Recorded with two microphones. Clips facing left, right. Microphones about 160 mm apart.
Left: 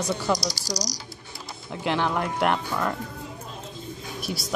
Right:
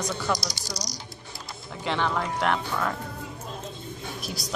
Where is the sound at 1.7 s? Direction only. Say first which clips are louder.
Left 2 dB; 15° left (ahead or behind).